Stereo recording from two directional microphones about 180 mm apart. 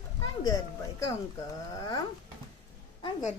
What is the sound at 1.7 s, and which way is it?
Speech, 20° left (ahead or behind).